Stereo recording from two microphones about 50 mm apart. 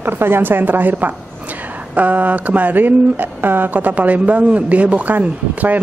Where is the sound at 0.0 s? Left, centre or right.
Right.